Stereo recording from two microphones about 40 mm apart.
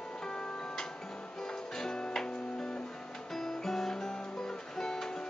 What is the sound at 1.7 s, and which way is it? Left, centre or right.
Music, centre.